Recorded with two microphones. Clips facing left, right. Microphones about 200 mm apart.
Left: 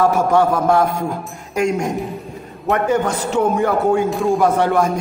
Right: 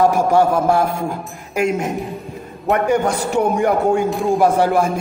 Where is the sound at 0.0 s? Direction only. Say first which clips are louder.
Right 1 dB; 10° right (ahead or behind).